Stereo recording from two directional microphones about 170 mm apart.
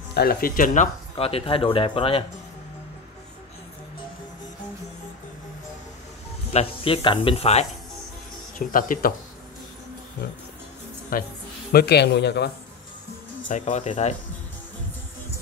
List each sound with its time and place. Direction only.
0.1 s speech: 65° left (ahead or behind)
1.1 s speech: 35° left (ahead or behind)
6.5 s speech: 35° left (ahead or behind)
8.5 s speech: 55° left (ahead or behind)
11.1 s speech: 55° left (ahead or behind)
11.7 s speech: 75° left (ahead or behind)
13.5 s speech: 45° left (ahead or behind)